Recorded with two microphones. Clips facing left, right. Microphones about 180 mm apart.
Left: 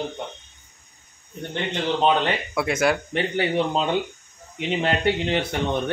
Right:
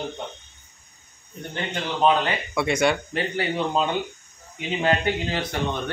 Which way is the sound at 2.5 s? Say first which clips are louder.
Right 1 dB; 5° left (ahead or behind).